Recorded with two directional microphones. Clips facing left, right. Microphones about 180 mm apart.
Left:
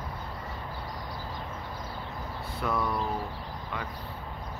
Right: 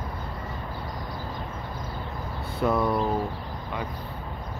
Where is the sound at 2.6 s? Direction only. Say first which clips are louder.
Right 6 dB; 25° right (ahead or behind).